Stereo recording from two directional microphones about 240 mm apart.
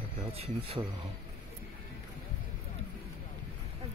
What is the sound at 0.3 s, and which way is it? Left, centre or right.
Speech, right.